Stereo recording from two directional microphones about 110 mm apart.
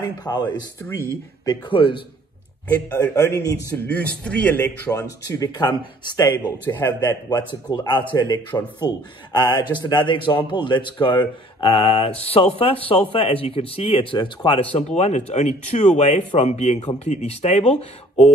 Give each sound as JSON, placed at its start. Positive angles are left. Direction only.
{"t": 0.0, "sound": "speech", "side_deg": 40}
{"t": 1.7, "sound": "a man's voice", "side_deg": 50}
{"t": 2.9, "sound": "a man's voice", "side_deg": 20}
{"t": 3.7, "sound": "speech", "side_deg": 15}
{"t": 4.9, "sound": "speech", "side_deg": 35}
{"t": 6.6, "sound": "speech", "side_deg": 15}
{"t": 7.1, "sound": "a man's voice", "side_deg": 40}